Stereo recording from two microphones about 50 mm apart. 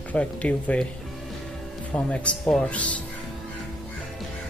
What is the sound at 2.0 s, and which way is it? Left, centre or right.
Speech, left.